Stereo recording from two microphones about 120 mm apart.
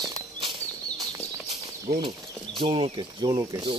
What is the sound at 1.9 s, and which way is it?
Speech, 45° right (ahead or behind).